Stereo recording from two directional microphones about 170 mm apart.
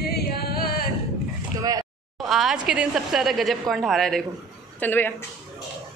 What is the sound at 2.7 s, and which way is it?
A woman's voice, 5° right (ahead or behind).